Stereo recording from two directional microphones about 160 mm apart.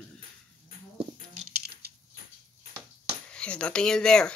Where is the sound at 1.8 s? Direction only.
80° right.